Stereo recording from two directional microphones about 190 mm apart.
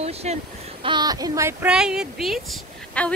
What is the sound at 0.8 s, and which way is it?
Speech, 20° right (ahead or behind).